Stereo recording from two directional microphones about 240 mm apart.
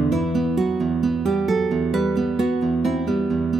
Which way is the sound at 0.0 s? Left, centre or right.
Centre.